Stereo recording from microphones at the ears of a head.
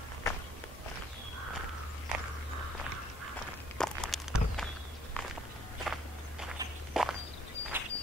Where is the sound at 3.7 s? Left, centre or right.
Centre.